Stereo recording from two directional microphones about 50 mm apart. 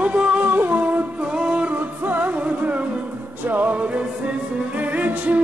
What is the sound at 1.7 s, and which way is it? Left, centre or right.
Music, right.